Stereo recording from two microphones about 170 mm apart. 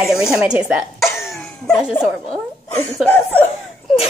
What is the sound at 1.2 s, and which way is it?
Cough, centre (ahead or behind).